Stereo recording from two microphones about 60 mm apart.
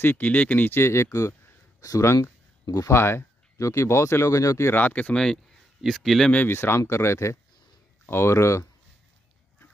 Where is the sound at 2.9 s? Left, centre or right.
Left.